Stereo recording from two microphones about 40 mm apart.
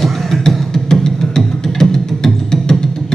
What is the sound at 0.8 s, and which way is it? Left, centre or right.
Music, centre.